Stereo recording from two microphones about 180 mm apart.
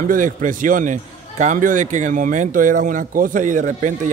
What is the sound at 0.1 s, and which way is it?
Speech, 45° right (ahead or behind).